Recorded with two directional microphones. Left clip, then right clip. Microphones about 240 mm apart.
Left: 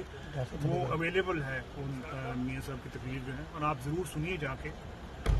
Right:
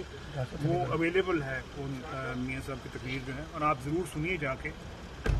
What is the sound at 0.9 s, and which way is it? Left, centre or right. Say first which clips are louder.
Speech: right 3 dB; centre.